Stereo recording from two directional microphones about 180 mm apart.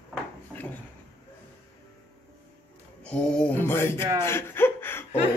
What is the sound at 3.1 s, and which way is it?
Speech, 10° left (ahead or behind).